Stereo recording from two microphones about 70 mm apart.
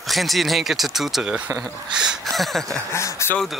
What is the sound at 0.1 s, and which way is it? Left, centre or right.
Speech, centre.